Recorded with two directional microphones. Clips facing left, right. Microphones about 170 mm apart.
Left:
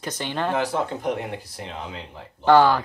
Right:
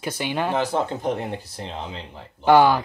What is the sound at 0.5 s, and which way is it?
Speech, 30° right (ahead or behind).